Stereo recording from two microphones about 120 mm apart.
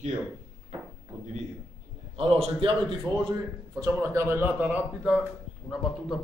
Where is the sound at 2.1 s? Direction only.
55° right (ahead or behind).